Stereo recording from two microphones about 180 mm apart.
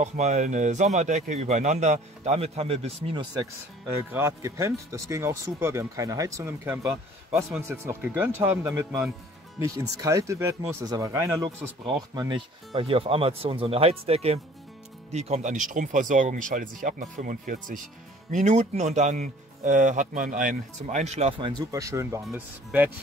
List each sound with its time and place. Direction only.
0.0 s speech: 40° right (ahead or behind)
3.9 s speech: 15° right (ahead or behind)